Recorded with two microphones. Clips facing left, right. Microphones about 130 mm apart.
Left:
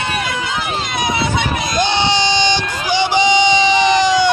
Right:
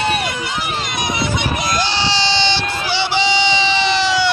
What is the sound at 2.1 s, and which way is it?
Baby cry, 15° left (ahead or behind).